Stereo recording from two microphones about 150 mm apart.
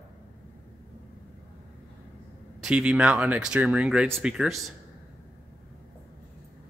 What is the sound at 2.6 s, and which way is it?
Speech, 5° right (ahead or behind).